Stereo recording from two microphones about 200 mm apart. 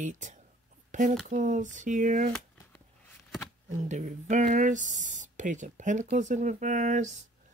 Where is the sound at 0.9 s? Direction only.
40° right (ahead or behind).